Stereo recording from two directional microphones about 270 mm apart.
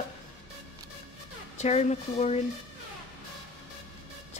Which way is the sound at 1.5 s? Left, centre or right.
Left.